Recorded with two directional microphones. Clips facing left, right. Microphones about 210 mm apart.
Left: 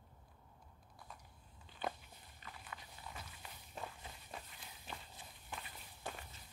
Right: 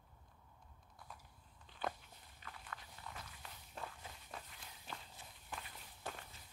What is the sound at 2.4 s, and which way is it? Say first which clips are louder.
Walk: even; 5° left (ahead or behind).